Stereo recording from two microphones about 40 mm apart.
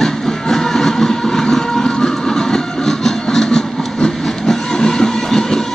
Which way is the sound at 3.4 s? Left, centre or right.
Left.